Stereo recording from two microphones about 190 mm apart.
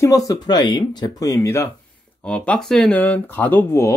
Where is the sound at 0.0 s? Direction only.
15° left (ahead or behind).